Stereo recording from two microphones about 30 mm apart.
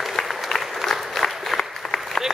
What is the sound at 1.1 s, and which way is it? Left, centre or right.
Applause, centre.